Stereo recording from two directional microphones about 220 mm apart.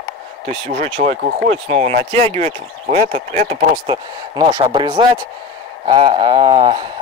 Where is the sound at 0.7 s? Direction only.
25° right (ahead or behind).